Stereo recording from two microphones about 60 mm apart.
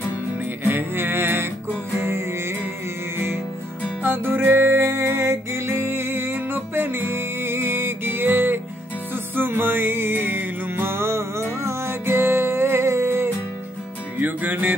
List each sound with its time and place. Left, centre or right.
0.7 s music: right
4.0 s music: right
14.2 s music: right